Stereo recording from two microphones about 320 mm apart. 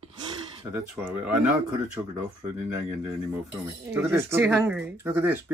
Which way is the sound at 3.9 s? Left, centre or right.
Centre.